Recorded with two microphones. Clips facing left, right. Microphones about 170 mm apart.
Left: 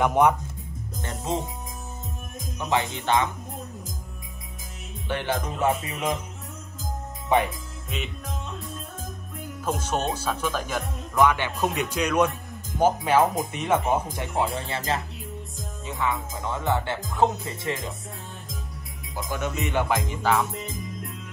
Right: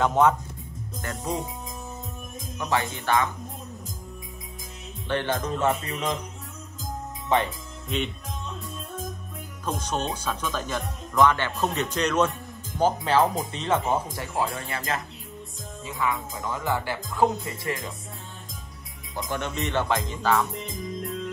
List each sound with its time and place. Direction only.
0.0 s speech: 15° left (ahead or behind)
2.7 s speech: 20° left (ahead or behind)
5.0 s speech: 10° left (ahead or behind)
7.4 s speech: centre (ahead or behind)
9.7 s speech: 5° left (ahead or behind); by 15.0 s 25° left (ahead or behind)
16.0 s speech: 25° left (ahead or behind)
19.1 s speech: centre (ahead or behind)